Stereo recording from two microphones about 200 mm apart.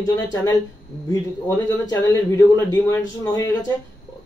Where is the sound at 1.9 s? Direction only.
15° left (ahead or behind).